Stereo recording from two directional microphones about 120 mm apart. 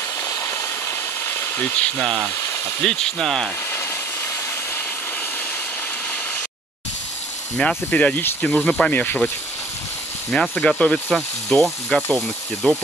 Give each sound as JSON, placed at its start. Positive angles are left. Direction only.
{"t": 0.2, "sound": "a sound", "side_deg": 30}
{"t": 1.8, "sound": "speech", "side_deg": 5}
{"t": 7.5, "sound": "speech", "side_deg": 10}
{"t": 10.3, "sound": "speech", "side_deg": 5}